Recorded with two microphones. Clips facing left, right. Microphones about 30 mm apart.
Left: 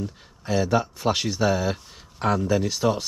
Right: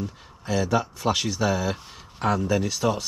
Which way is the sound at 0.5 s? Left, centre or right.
Centre.